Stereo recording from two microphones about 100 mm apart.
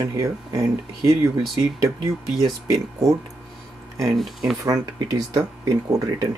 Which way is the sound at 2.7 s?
35° right (ahead or behind).